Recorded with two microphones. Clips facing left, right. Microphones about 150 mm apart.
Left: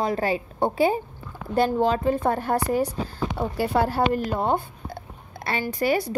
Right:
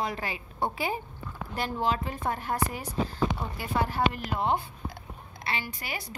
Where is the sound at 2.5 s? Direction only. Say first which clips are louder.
Left 3 dB; 60° left (ahead or behind).